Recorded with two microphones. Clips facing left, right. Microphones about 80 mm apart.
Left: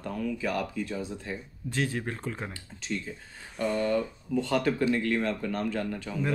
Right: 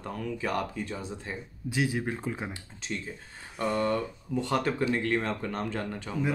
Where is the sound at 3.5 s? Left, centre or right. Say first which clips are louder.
Left 1 dB; right.